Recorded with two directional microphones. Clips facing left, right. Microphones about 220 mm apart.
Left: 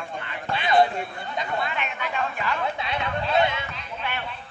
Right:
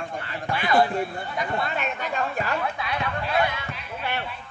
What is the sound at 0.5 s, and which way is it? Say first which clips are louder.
Speech: left 1 dB; 20° left (ahead or behind).